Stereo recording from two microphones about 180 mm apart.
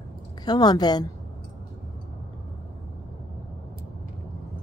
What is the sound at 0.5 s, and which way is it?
Speech, 20° left (ahead or behind).